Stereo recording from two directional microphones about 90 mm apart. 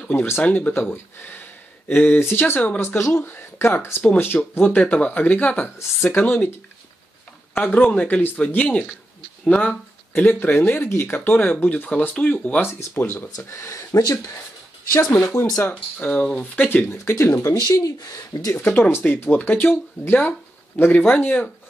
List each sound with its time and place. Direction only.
0.4 s speech: 20° left (ahead or behind)
3.0 s speech: 30° left (ahead or behind)
7.5 s speech: 20° left (ahead or behind)
10.2 s speech: 20° left (ahead or behind)
12.6 s speech: 25° left (ahead or behind)
15.1 s speech: 30° left (ahead or behind)
15.6 s speech: 15° left (ahead or behind)
16.5 s speech: 25° left (ahead or behind)
17.6 s speech: 45° left (ahead or behind)
18.5 s speech: 25° left (ahead or behind)